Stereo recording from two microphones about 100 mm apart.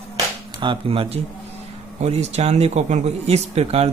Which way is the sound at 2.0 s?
90° right.